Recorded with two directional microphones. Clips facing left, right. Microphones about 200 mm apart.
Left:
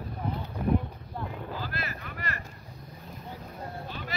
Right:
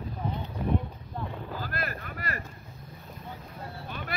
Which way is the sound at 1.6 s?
50° right (ahead or behind).